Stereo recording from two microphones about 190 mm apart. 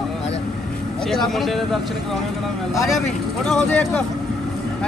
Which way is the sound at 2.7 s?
Centre (ahead or behind).